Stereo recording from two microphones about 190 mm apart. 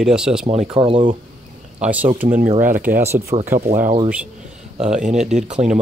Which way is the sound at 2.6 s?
45° right (ahead or behind).